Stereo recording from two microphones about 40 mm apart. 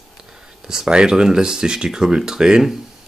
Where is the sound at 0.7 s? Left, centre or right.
Centre.